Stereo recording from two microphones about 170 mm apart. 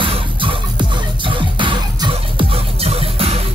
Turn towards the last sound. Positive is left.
turn(degrees=-35)  # may be behind; listen again after turning